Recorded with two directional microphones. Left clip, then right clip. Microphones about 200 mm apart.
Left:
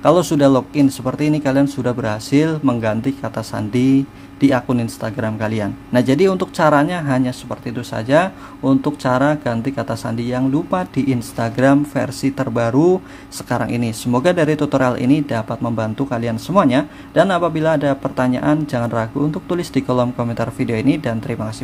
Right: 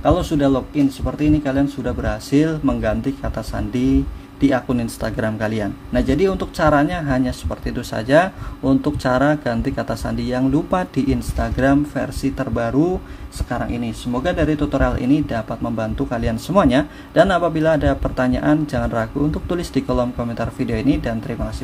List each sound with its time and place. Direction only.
0.0 s speech: 25° left (ahead or behind)